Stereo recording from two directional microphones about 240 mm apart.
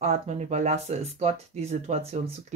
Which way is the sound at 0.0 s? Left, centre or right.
Right.